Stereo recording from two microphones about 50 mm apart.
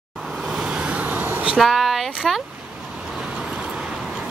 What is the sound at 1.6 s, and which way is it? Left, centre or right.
Speech, centre.